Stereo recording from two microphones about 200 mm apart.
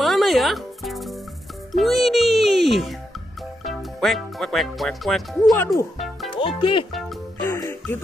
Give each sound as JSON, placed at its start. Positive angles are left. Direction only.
{"t": 0.0, "sound": "music", "side_deg": 0}
{"t": 6.3, "sound": "speech", "side_deg": 25}
{"t": 7.4, "sound": "music", "side_deg": 10}